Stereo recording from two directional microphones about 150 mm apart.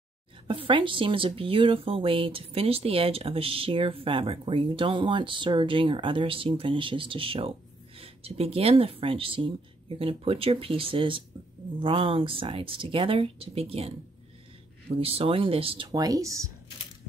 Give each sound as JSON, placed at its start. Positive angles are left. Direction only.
{"t": 0.5, "sound": "speech", "side_deg": -35}